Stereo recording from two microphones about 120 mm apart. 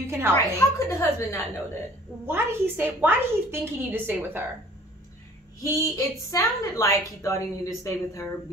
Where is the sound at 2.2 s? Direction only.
20° right (ahead or behind).